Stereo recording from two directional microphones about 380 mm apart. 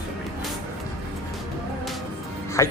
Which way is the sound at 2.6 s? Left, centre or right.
Centre.